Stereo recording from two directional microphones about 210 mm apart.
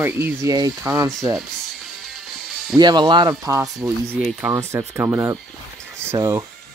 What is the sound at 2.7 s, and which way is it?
Speech, 20° right (ahead or behind).